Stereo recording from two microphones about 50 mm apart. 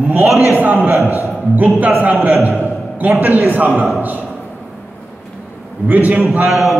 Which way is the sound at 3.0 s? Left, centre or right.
Right.